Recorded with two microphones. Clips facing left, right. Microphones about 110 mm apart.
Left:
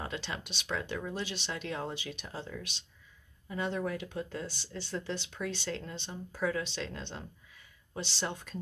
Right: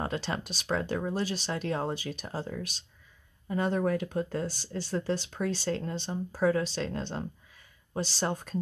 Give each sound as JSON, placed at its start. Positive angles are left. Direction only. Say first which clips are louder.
{"t": 0.0, "sound": "speech", "louder": "right 6 dB", "side_deg": -40}